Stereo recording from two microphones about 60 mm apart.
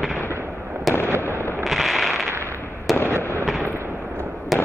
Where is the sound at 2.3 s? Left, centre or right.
Right.